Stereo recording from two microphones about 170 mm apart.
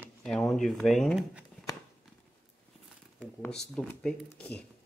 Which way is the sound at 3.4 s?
5° left (ahead or behind).